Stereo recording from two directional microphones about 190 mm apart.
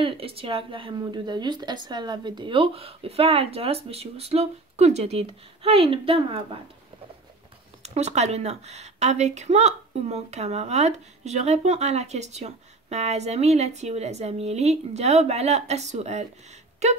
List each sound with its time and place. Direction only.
0.0 s speech: 30° right (ahead or behind)
7.8 s a woman's voice: 35° right (ahead or behind)